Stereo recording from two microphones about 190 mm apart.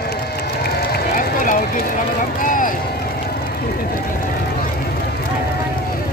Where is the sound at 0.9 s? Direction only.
45° left (ahead or behind).